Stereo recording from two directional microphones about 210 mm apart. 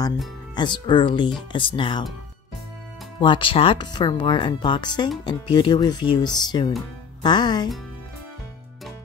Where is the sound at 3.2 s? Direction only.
25° left (ahead or behind).